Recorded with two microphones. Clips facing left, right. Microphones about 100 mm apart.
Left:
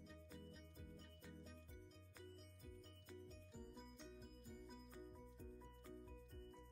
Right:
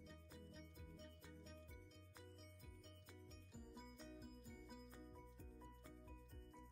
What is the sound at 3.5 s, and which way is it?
Music, centre (ahead or behind).